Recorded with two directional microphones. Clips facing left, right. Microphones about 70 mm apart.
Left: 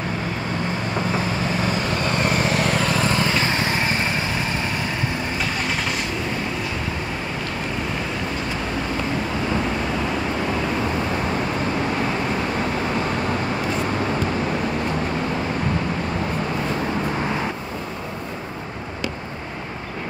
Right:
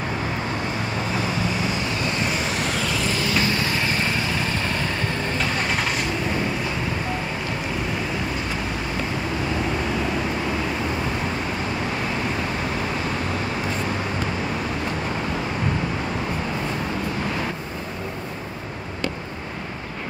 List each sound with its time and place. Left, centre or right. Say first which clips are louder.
2.1 s vehicle: left 4 dB; left
3.4 s vehicle: left 1 dB; left